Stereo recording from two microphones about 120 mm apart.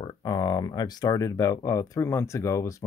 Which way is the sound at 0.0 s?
35° left (ahead or behind).